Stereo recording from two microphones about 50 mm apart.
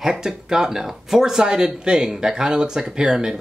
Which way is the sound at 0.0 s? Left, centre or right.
Centre.